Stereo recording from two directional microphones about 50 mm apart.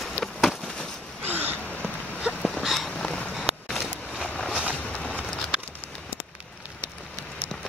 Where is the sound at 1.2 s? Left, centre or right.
Right.